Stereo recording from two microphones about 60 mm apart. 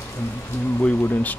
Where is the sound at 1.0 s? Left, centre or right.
Left.